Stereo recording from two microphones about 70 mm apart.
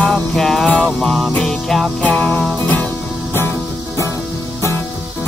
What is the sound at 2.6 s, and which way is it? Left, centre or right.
Music, centre.